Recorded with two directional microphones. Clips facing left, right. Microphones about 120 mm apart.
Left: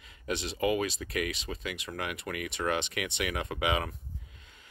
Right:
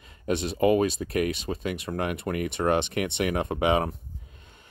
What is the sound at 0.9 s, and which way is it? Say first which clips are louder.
Speech: right 7 dB; 50° right (ahead or behind).